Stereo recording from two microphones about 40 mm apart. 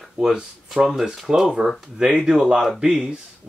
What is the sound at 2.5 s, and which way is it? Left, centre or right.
Speech, centre.